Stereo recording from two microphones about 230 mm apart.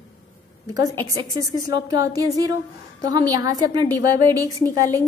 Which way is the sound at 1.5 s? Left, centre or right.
Centre.